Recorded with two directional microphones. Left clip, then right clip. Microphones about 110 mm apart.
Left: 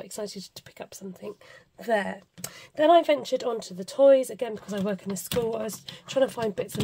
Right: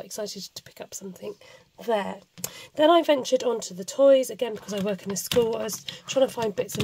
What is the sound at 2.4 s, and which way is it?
Speech, 65° right (ahead or behind).